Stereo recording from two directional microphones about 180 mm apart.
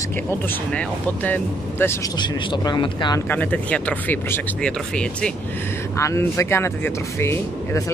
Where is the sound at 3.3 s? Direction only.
10° left (ahead or behind).